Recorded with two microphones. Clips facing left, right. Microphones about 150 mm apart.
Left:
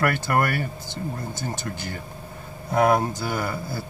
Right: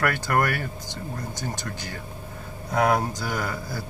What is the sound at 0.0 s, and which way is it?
Speech, 5° left (ahead or behind).